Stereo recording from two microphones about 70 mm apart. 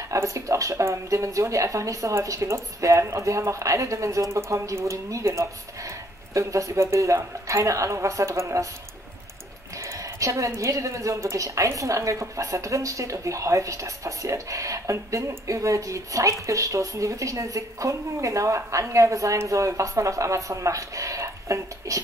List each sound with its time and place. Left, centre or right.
0.1 s a woman's voice: right
9.8 s a woman's voice: right